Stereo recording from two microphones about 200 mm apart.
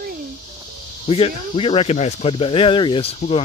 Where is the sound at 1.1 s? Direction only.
30° left (ahead or behind).